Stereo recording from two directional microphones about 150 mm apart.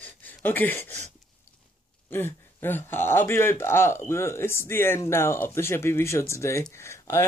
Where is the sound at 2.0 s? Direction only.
15° left (ahead or behind).